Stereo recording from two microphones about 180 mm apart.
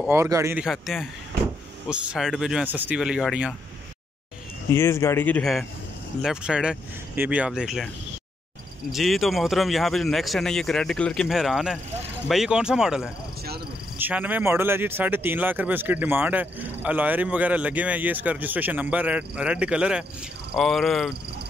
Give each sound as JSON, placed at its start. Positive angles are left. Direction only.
{"t": 0.1, "sound": "speech", "side_deg": -15}
{"t": 0.7, "sound": "speech", "side_deg": 0}
{"t": 4.7, "sound": "speech", "side_deg": 15}
{"t": 8.9, "sound": "speech", "side_deg": 0}